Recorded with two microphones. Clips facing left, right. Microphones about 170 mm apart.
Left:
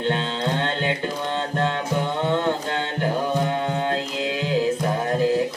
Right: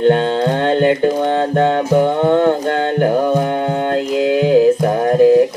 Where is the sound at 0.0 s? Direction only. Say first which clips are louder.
Right 11 dB; 50° right (ahead or behind).